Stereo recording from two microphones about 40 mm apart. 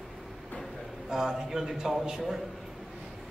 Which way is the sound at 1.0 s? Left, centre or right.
Centre.